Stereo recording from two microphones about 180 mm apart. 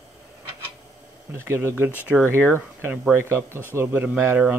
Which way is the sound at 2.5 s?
10° right (ahead or behind).